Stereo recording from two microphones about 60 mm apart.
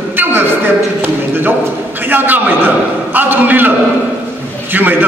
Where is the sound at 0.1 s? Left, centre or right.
Right.